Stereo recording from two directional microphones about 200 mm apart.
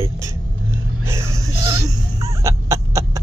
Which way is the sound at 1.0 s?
15° right (ahead or behind).